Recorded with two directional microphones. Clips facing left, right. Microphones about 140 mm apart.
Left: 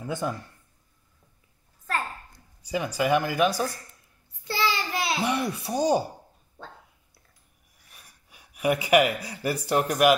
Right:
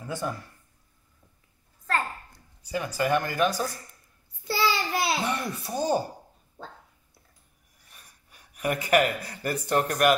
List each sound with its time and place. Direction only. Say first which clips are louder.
0.0 s speech: left 2 dB; 20° left (ahead or behind)
2.6 s speech: left 2 dB; 10° left (ahead or behind)
4.5 s child singing: right 1 dB; 10° right (ahead or behind)
5.2 s speech: left 3 dB; 10° left (ahead or behind)
7.9 s speech: left 1 dB; 10° left (ahead or behind)